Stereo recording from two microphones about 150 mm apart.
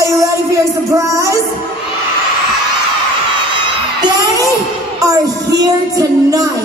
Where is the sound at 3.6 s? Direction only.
30° right (ahead or behind).